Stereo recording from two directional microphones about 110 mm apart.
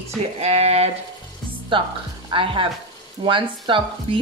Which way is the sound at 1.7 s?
50° right (ahead or behind).